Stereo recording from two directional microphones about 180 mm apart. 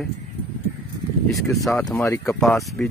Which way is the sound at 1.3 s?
Centre (ahead or behind).